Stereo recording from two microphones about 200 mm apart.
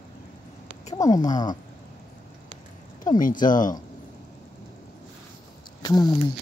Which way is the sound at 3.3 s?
20° left (ahead or behind).